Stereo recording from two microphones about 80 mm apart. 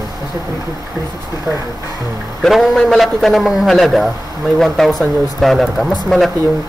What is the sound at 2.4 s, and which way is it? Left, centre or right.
A man's voice, centre.